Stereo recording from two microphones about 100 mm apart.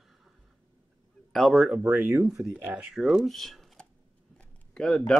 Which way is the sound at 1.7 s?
20° right (ahead or behind).